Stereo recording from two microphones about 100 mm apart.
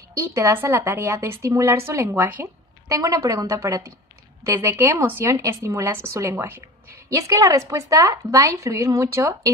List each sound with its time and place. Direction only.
0.3 s a woman's voice: 25° right (ahead or behind)
2.9 s a woman's voice: 35° right (ahead or behind)
7.2 s speech: 35° right (ahead or behind)